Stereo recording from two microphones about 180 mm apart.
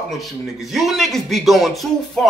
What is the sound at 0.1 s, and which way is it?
A man's voice, centre (ahead or behind).